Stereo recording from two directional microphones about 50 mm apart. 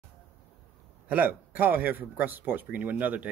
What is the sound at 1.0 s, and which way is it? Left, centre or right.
Speech, right.